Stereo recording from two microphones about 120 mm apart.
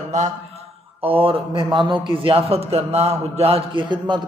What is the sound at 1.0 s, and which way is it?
A man's voice, 50° right (ahead or behind).